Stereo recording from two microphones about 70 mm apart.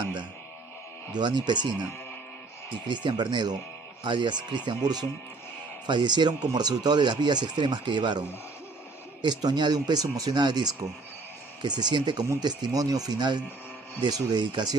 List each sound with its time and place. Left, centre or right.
0.0 s music: right
1.1 s speech: right
2.9 s speech: right
9.2 s speech: right
11.6 s speech: right
12.4 s speech: right